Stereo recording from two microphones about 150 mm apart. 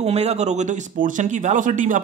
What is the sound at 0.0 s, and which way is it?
Speech, 45° right (ahead or behind).